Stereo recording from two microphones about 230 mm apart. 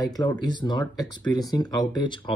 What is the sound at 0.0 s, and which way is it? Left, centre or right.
Speech, centre.